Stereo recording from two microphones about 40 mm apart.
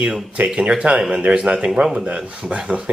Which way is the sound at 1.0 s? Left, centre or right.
Right.